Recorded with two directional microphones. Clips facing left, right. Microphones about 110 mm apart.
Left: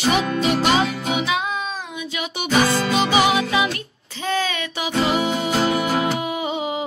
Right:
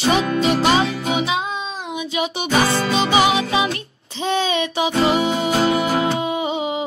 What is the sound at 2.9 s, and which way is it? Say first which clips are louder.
Music: right 2 dB; 25° right (ahead or behind).